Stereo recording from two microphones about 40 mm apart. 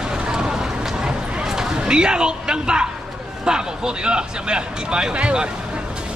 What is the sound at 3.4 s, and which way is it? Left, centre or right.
Speech, right.